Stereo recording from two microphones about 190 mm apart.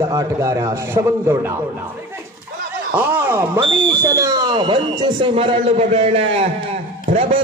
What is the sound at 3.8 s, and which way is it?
Speech, 15° right (ahead or behind).